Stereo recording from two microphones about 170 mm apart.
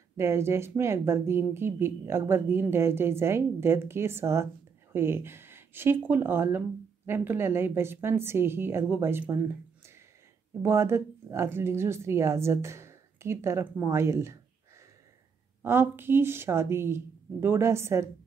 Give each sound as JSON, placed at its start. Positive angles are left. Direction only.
{"t": 0.2, "sound": "a woman's voice", "side_deg": -15}
{"t": 10.6, "sound": "a woman's voice", "side_deg": -15}
{"t": 15.6, "sound": "a woman's voice", "side_deg": -15}